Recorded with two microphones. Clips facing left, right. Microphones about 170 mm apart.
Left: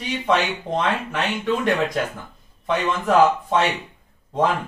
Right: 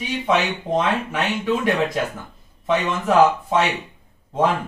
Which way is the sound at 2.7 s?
5° right (ahead or behind).